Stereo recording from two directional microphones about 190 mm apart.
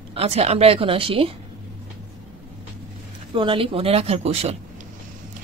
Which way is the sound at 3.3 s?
25° right (ahead or behind).